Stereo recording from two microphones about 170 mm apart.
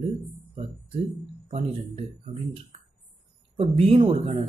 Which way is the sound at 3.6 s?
35° right (ahead or behind).